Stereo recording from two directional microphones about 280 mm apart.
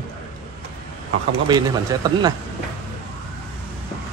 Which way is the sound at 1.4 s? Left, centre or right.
Centre.